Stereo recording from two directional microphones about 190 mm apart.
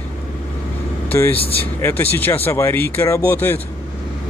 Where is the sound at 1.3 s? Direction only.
30° left (ahead or behind).